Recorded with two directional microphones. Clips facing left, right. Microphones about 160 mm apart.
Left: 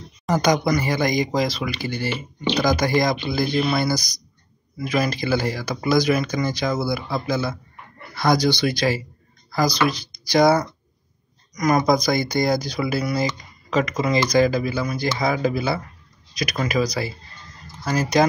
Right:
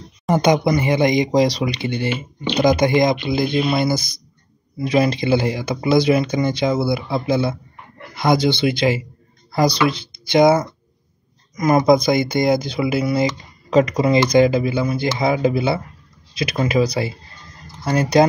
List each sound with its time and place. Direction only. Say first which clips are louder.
0.3 s speech: right 3 dB; 25° right (ahead or behind)